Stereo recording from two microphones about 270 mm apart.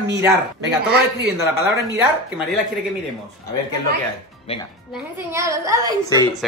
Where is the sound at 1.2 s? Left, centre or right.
Centre.